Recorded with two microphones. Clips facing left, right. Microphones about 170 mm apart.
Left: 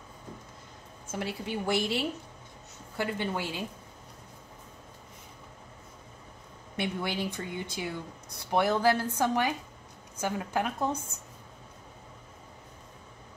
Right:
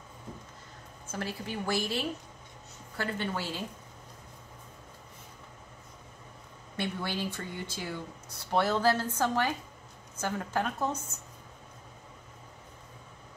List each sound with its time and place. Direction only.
1.1 s a woman's voice: 20° left (ahead or behind)
6.8 s speech: 15° left (ahead or behind)